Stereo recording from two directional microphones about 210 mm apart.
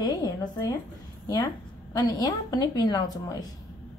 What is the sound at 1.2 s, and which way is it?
A woman's voice, 15° left (ahead or behind).